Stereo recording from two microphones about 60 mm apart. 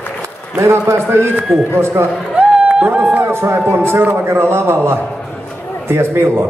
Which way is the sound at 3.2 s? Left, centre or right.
Right.